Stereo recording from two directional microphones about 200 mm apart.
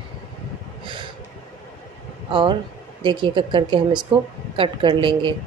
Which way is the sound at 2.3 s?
25° right (ahead or behind).